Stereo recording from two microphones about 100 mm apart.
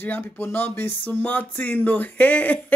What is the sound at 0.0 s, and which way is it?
Speech, 20° left (ahead or behind).